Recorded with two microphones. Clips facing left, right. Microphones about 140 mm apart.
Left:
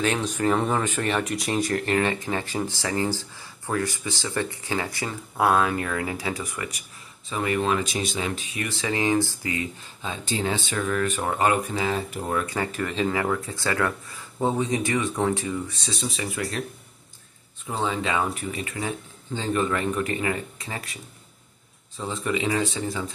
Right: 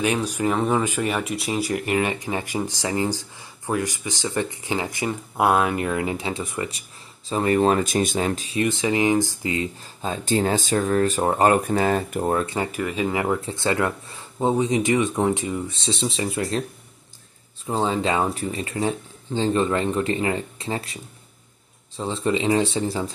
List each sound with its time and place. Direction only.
0.0 s speech: 10° right (ahead or behind); by 8.5 s 40° right (ahead or behind)
8.5 s speech: 20° right (ahead or behind)
10.0 s speech: 45° right (ahead or behind)
12.7 s speech: 10° right (ahead or behind); by 16.6 s 30° right (ahead or behind)
17.6 s speech: 30° right (ahead or behind)